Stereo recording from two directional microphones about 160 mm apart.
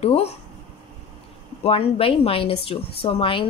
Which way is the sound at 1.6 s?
35° left (ahead or behind).